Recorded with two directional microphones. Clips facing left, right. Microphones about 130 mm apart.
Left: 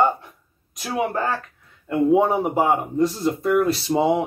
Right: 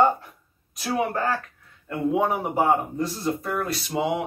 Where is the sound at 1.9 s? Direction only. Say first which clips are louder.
Left 6 dB; 30° left (ahead or behind).